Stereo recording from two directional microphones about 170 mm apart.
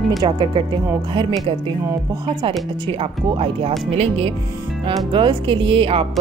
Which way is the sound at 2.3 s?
25° right (ahead or behind).